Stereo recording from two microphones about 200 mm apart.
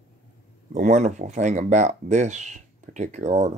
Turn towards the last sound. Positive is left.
turn(degrees=-35)  # may be behind; listen again after turning